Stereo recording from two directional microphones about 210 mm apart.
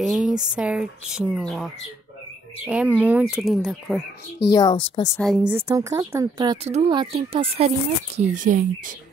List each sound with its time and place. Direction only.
0.0 s speech: 5° right (ahead or behind)
4.5 s a woman's voice: 20° left (ahead or behind)
5.2 s speech: 5° right (ahead or behind)
5.7 s speech: 15° right (ahead or behind)
8.2 s speech: 40° right (ahead or behind)